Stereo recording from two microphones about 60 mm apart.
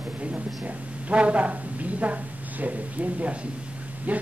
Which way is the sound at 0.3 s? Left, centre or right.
Right.